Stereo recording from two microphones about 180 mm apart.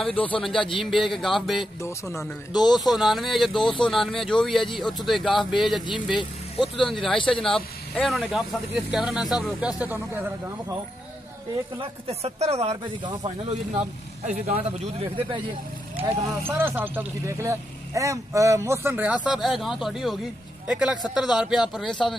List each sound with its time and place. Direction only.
0.4 s speech: centre (ahead or behind)
1.8 s speech: 15° left (ahead or behind)
2.9 s speech: centre (ahead or behind)
12.1 s speech: 35° right (ahead or behind)
14.2 s speech: 40° right (ahead or behind)
16.0 s speech: 10° right (ahead or behind)